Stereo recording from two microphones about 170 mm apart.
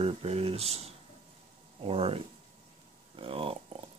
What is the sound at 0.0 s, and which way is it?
Speech, 35° right (ahead or behind).